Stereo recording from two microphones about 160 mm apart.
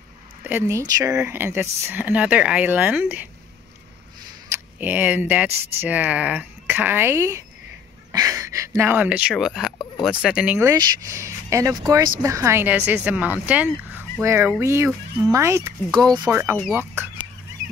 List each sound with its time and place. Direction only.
0.4 s speech: 15° right (ahead or behind)
4.7 s speech: 10° right (ahead or behind)
8.1 s a sound: 20° right (ahead or behind)
9.3 s speech: centre (ahead or behind)
10.7 s speech: 20° right (ahead or behind)
14.9 s speech: centre (ahead or behind)
15.3 s speech: 15° right (ahead or behind)